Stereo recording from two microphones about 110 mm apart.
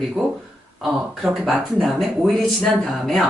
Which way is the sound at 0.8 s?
Centre (ahead or behind).